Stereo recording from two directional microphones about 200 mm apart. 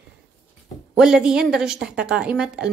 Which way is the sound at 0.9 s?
5° right (ahead or behind).